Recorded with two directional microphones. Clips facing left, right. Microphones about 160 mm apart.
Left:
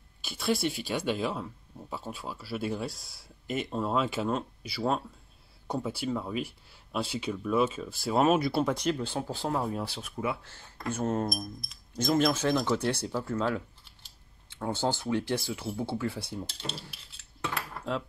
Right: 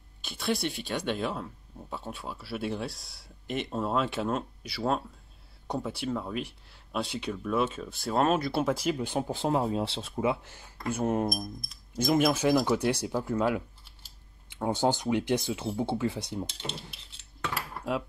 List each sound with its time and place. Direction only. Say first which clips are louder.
0.2 s speech: left 1 dB; centre (ahead or behind)
8.9 s speech: right 2 dB; 15° right (ahead or behind)
17.6 s a sound: right 2 dB; 10° right (ahead or behind)